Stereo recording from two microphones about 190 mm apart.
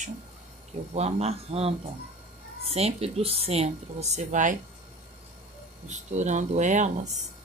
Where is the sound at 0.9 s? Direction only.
35° right (ahead or behind).